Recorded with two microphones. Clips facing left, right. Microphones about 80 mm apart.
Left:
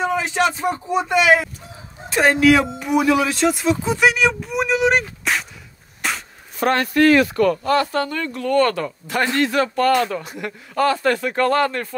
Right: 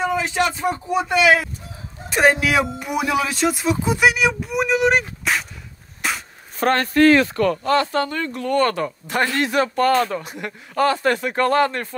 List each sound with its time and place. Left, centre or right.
0.0 s speech: centre
2.1 s speech: centre
5.3 s a sound: centre
6.6 s speech: right